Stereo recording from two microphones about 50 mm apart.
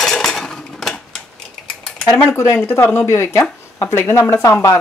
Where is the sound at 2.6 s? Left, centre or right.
Left.